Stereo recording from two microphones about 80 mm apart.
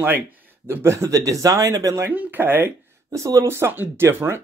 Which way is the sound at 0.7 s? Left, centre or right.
Right.